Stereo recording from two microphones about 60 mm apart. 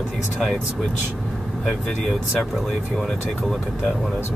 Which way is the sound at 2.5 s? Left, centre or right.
Centre.